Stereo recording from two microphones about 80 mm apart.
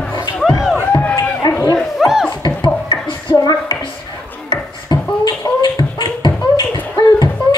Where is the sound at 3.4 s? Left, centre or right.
Left.